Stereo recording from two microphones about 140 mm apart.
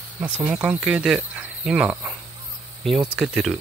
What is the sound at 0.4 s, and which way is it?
Speech, 10° right (ahead or behind).